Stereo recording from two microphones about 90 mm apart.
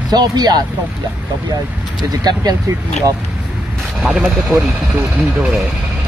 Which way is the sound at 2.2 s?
45° right (ahead or behind).